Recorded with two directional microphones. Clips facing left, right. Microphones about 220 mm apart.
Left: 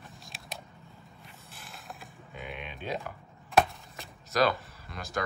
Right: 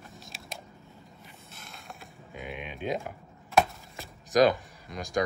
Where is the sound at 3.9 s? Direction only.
20° right (ahead or behind).